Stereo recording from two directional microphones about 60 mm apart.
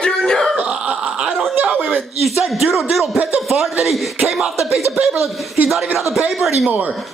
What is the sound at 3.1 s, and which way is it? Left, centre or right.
Speech, right.